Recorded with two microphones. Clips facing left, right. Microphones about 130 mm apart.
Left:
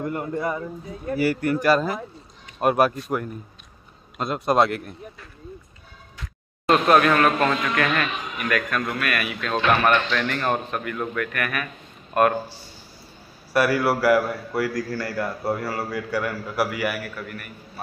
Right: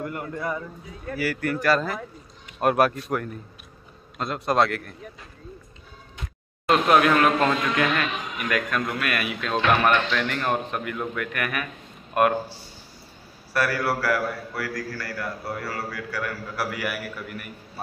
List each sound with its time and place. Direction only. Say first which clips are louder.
0.0 s a man's voice: left 4 dB; 25° left (ahead or behind)
2.6 s speech: left 1 dB; 5° left (ahead or behind)
4.2 s a man's voice: left 2 dB; 15° left (ahead or behind)
6.7 s a man's voice: left 1 dB; 15° right (ahead or behind)
10.1 s a man's voice: left 1 dB; 10° right (ahead or behind)
13.5 s a man's voice: left 4 dB; 15° left (ahead or behind)
16.7 s speech: left 4 dB; centre (ahead or behind)